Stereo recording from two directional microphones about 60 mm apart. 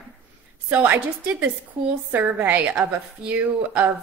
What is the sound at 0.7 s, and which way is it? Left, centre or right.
Speech, right.